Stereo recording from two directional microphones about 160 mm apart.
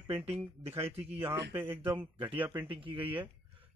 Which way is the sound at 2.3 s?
10° right (ahead or behind).